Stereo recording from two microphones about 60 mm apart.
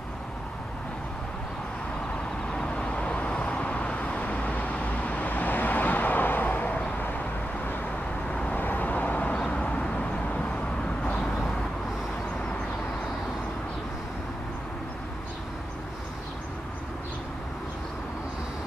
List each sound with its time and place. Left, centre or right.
2.5 s vehicle: centre
8.3 s vehicle: centre
8.5 s vehicle: left